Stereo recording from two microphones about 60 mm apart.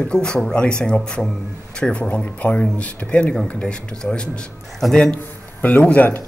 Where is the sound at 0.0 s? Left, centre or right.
Centre.